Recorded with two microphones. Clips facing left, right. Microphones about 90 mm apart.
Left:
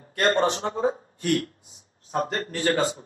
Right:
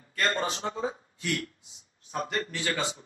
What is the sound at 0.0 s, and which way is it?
A man's voice, 55° left (ahead or behind).